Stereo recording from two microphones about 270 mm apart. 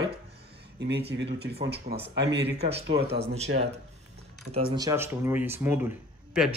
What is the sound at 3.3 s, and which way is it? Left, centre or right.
Speech, right.